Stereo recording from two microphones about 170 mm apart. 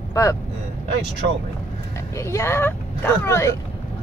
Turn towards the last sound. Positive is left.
turn(degrees=15)  # may be behind; listen again after turning